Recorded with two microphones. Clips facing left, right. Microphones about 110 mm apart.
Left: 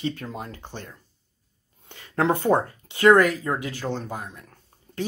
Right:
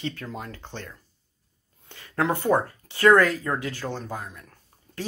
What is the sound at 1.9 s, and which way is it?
Speech, 25° left (ahead or behind).